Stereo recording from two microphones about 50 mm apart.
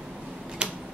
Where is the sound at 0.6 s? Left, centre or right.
Centre.